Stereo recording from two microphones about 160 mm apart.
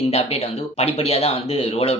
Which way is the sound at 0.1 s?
40° left (ahead or behind).